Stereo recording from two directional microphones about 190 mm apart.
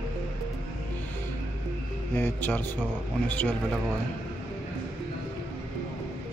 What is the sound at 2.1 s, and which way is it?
Speech, 10° left (ahead or behind).